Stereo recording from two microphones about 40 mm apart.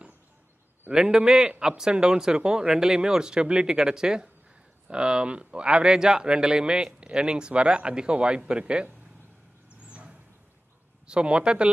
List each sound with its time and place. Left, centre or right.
0.9 s a man's voice: centre
9.8 s vehicle: right
11.1 s speech: right